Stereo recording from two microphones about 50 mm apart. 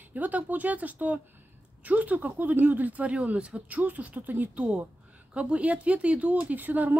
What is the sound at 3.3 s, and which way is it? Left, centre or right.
Speech, right.